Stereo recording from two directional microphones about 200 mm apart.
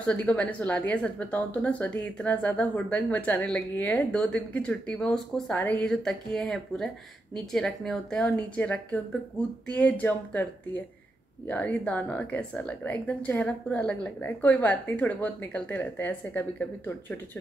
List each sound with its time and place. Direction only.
0.0 s speech: 5° left (ahead or behind)
11.4 s speech: 5° left (ahead or behind)